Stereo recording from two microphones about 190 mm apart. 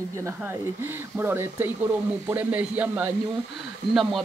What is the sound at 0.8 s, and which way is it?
Speech, 10° right (ahead or behind).